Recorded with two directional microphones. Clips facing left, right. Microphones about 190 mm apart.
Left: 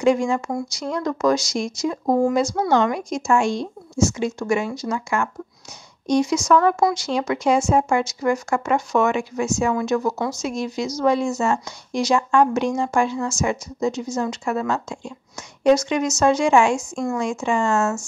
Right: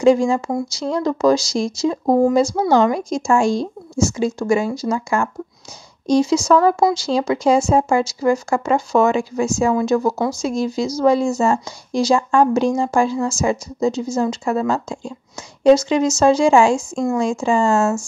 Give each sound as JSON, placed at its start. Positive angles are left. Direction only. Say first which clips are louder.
{"t": 0.0, "sound": "speech", "louder": "right 4 dB", "side_deg": -30}